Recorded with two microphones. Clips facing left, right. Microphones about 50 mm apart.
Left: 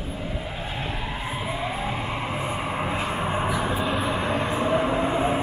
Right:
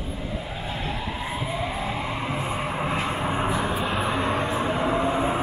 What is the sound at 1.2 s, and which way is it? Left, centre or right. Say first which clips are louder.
Vehicle: left 1 dB; centre.